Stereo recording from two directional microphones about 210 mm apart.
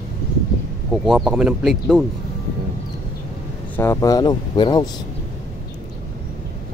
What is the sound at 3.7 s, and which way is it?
Speech, 10° left (ahead or behind).